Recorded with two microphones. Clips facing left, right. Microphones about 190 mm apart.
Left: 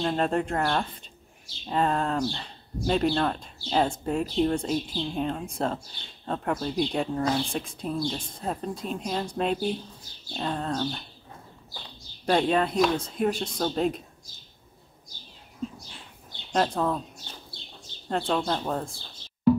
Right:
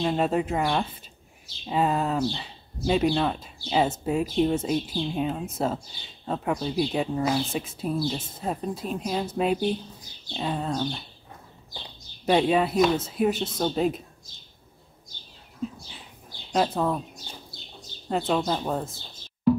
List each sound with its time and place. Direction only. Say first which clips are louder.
0.0 s a woman's voice: right 1 dB; 5° right (ahead or behind)
1.7 s a sound: right 1 dB; 5° right (ahead or behind)
2.9 s a woman's voice: right 1 dB; 5° right (ahead or behind)
10.3 s a sound: right 1 dB; 10° right (ahead or behind)
12.3 s a woman's voice: right 2 dB; 10° right (ahead or behind)
16.5 s a woman's voice: right 1 dB; 5° right (ahead or behind)